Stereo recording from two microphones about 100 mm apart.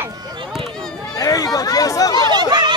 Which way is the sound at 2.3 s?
45° right (ahead or behind).